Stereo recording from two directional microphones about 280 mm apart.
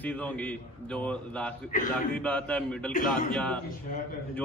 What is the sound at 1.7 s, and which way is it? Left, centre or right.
Speech, left.